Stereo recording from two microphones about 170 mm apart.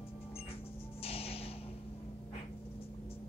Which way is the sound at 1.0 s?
35° left (ahead or behind).